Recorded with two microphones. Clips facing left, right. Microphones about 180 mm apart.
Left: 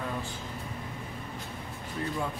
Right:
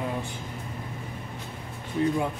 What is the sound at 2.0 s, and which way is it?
Speech, 20° right (ahead or behind).